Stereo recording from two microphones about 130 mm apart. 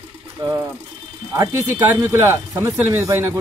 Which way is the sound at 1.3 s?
20° right (ahead or behind).